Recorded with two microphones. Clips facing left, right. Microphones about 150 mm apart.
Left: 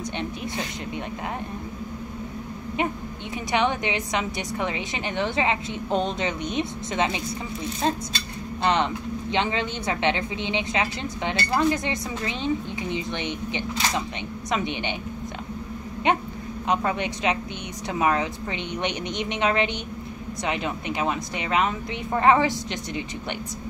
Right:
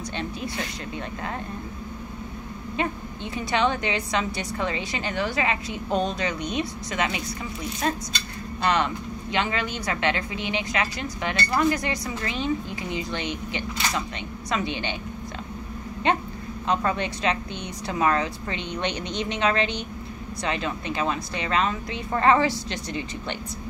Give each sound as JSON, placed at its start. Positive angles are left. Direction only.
{"t": 3.3, "sound": "speech", "side_deg": 15}
{"t": 16.6, "sound": "a woman's voice", "side_deg": 15}